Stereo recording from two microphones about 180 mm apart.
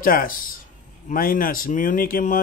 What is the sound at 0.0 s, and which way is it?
Speech, 50° left (ahead or behind).